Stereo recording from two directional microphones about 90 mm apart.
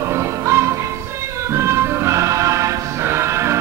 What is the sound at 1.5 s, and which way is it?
Music, 30° right (ahead or behind).